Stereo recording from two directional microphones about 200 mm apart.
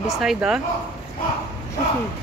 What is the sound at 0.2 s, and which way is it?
Speech, 5° right (ahead or behind).